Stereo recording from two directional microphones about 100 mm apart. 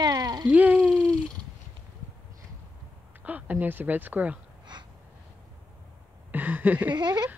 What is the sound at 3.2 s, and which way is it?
Speech, 15° right (ahead or behind).